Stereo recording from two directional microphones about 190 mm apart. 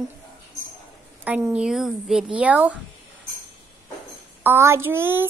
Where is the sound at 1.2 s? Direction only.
5° right (ahead or behind).